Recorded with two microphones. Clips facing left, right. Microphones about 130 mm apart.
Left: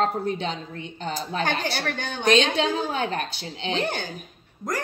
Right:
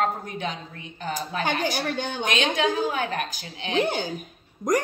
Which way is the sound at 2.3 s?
35° left (ahead or behind).